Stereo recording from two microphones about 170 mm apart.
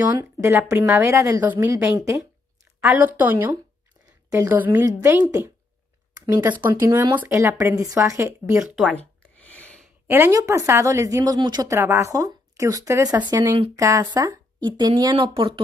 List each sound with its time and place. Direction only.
0.1 s speech: 20° right (ahead or behind)
2.8 s speech: 10° right (ahead or behind)
8.5 s speech: centre (ahead or behind)
8.9 s a sound: 10° left (ahead or behind)
10.0 s speech: 15° right (ahead or behind); by 15.6 s 30° right (ahead or behind)